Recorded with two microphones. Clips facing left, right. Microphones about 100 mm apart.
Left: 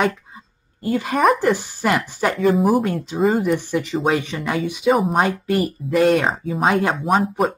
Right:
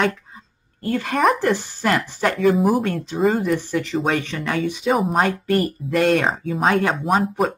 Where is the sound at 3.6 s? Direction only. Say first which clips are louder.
Left 1 dB; 15° left (ahead or behind).